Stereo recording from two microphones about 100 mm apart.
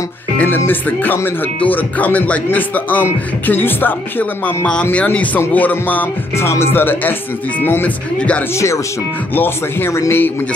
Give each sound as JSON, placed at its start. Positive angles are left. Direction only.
{"t": 0.7, "sound": "speech", "side_deg": 20}
{"t": 8.5, "sound": "speech", "side_deg": 30}